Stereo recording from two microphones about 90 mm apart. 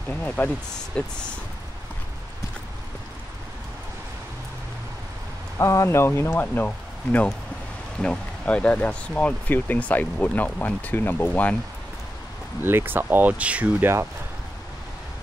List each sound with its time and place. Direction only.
0.1 s speech: 20° left (ahead or behind)
5.6 s speech: 30° left (ahead or behind)
12.6 s speech: 25° right (ahead or behind)